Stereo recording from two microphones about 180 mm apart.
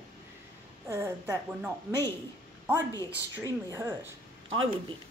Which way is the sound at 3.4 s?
15° right (ahead or behind).